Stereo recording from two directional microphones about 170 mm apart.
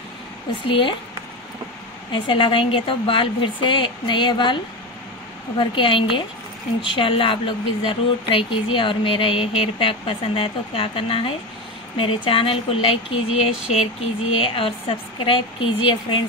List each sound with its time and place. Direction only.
0.7 s speech: 30° left (ahead or behind)
2.1 s speech: 30° left (ahead or behind)
5.6 s speech: 30° left (ahead or behind)